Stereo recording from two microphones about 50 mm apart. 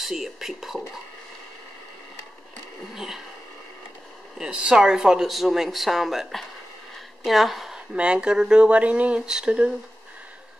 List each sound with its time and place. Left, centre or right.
0.0 s speech: centre
2.9 s a sound: centre
4.4 s speech: centre
7.7 s speech: right
9.2 s speech: centre